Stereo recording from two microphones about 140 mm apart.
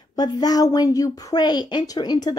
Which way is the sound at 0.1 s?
30° left (ahead or behind).